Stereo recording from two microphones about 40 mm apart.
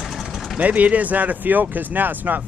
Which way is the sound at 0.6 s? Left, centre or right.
Right.